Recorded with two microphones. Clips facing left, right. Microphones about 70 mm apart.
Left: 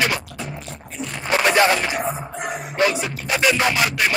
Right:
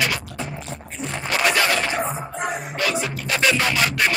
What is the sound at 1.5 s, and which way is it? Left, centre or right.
Music, left.